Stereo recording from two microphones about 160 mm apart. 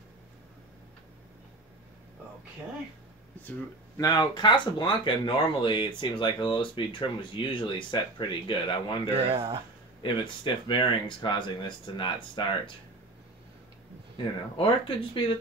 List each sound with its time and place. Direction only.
3.4 s speech: 20° left (ahead or behind)
9.1 s speech: 35° right (ahead or behind)
10.0 s speech: 30° left (ahead or behind)
14.1 s speech: 35° left (ahead or behind)